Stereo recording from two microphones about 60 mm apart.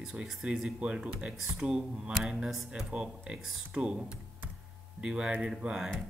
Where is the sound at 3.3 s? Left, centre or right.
Centre.